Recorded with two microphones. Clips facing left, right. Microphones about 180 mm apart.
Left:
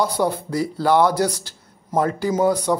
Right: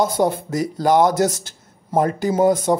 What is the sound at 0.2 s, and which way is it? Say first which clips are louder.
Speech: right 2 dB; 20° right (ahead or behind).